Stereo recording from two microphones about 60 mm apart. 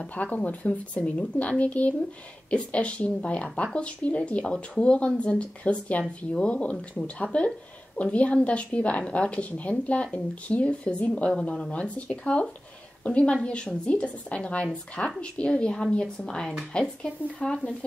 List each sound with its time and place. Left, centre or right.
0.1 s speech: left